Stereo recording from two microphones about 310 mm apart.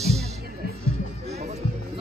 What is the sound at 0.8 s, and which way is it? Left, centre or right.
Music, right.